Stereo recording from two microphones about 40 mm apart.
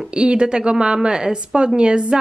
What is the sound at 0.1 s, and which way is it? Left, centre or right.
A woman's voice, right.